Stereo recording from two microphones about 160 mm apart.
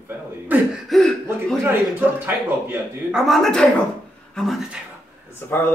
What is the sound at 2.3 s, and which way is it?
A man's voice, 5° right (ahead or behind).